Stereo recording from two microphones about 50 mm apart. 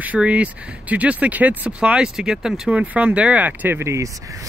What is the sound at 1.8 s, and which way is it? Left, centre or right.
Speech, right.